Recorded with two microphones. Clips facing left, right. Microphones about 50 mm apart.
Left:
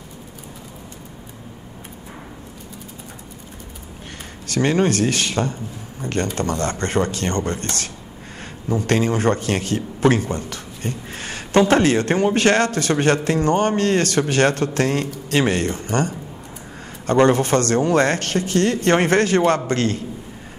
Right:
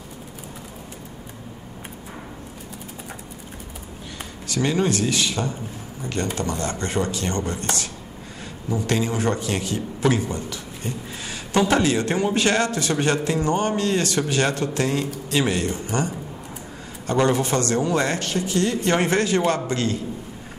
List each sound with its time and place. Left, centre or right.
4.5 s speech: left
8.6 s a man's voice: left